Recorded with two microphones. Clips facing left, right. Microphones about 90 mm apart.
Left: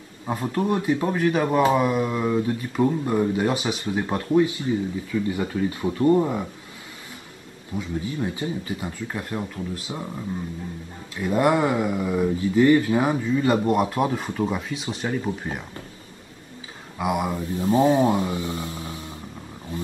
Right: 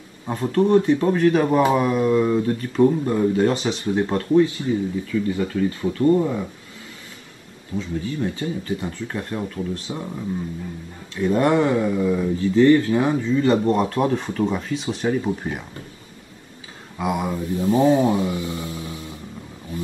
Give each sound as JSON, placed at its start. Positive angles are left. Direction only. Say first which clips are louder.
{"t": 0.3, "sound": "speech", "louder": "right 6 dB", "side_deg": 15}
{"t": 7.7, "sound": "speech", "louder": "right 2 dB", "side_deg": 15}
{"t": 11.1, "sound": "speech", "louder": "right 2 dB", "side_deg": 10}
{"t": 17.0, "sound": "speech", "louder": "right 1 dB", "side_deg": 15}
{"t": 17.6, "sound": "speech", "louder": "right 1 dB", "side_deg": 30}